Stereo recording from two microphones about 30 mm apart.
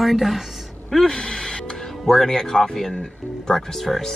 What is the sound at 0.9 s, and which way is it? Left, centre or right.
Speech, centre.